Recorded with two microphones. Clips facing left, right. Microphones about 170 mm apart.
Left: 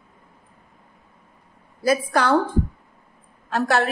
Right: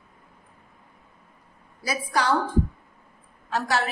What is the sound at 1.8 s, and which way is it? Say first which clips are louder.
Speech: left 6 dB; 55° left (ahead or behind).